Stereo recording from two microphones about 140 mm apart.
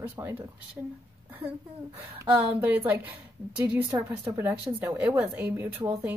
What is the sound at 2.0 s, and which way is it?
Speech, 15° right (ahead or behind).